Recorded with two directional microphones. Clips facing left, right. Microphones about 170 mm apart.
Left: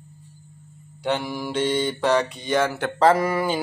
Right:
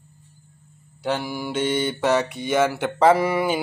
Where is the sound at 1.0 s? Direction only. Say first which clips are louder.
Even; centre (ahead or behind).